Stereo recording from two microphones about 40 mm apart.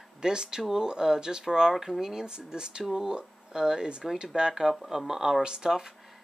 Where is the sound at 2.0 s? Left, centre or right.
Centre.